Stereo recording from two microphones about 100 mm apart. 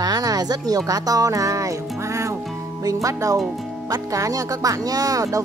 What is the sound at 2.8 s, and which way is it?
Speech, 35° right (ahead or behind).